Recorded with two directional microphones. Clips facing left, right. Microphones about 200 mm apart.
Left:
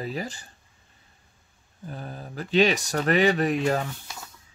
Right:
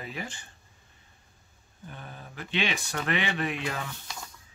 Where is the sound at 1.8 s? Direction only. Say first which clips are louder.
Left 7 dB; 35° left (ahead or behind).